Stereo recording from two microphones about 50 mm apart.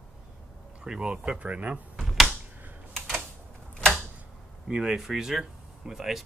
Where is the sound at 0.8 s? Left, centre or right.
Centre.